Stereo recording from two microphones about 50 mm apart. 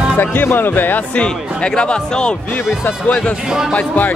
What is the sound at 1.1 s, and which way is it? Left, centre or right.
Speech, left.